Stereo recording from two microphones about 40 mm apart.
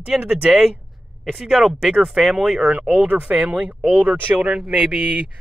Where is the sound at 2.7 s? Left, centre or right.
Right.